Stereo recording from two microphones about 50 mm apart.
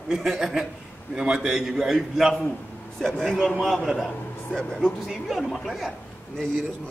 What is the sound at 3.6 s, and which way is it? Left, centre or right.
Speech, centre.